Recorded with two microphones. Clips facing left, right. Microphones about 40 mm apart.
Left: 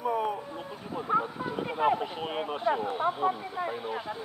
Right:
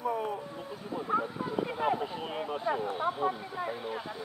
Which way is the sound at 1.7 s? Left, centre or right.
Centre.